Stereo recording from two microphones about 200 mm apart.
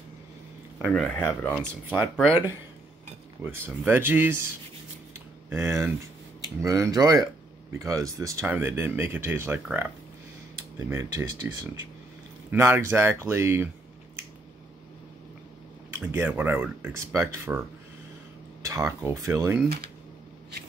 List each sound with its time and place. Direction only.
0.9 s speech: 5° left (ahead or behind)
1.9 s speech: 10° right (ahead or behind)
3.4 s speech: 10° right (ahead or behind)
5.5 s speech: 10° right (ahead or behind)
15.9 s speech: 10° right (ahead or behind)